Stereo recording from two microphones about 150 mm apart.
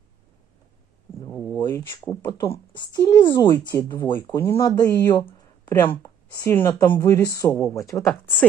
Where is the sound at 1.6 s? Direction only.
30° left (ahead or behind).